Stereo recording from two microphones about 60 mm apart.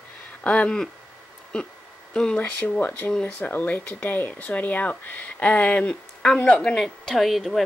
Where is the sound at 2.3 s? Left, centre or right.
Left.